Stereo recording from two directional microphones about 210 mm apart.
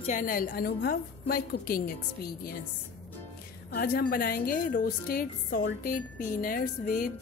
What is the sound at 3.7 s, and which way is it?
A woman's voice, 45° left (ahead or behind).